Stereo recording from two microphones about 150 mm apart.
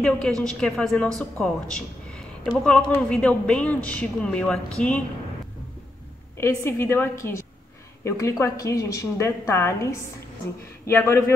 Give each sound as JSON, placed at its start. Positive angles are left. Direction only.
{"t": 0.0, "sound": "a woman's voice", "side_deg": 5}
{"t": 6.3, "sound": "a woman's voice", "side_deg": 15}